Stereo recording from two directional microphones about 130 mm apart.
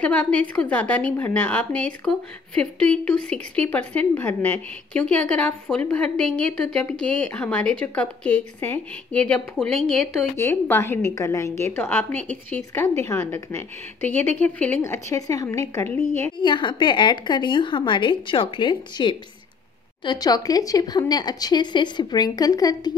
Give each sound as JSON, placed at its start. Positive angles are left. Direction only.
{"t": 0.0, "sound": "a woman's voice", "side_deg": 10}
{"t": 10.3, "sound": "a woman's voice", "side_deg": 20}
{"t": 13.0, "sound": "a woman's voice", "side_deg": 20}
{"t": 14.0, "sound": "a woman's voice", "side_deg": 15}
{"t": 16.4, "sound": "speech", "side_deg": 35}